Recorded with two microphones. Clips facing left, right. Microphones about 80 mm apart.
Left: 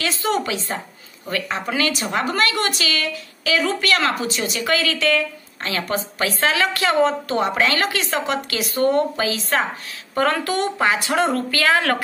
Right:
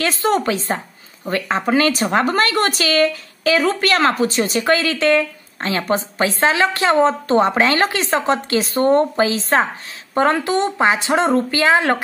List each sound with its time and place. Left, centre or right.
0.0 s a woman's voice: right
10.1 s speech: right